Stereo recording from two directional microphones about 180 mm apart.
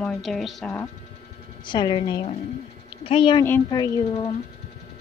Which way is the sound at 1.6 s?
25° left (ahead or behind).